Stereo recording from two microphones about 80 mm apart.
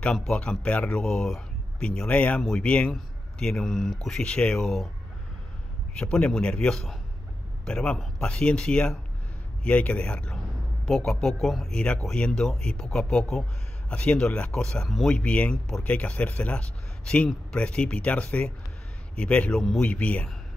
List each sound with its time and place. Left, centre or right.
0.3 s speech: centre
1.0 s speech: centre
5.9 s speech: centre